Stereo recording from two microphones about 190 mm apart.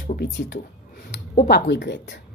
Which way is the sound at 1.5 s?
60° left (ahead or behind).